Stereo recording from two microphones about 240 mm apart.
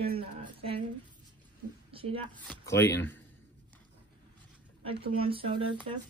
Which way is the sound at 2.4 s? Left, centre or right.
Centre.